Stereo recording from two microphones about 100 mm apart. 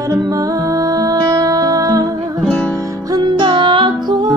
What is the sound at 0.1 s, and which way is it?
Music, 35° right (ahead or behind).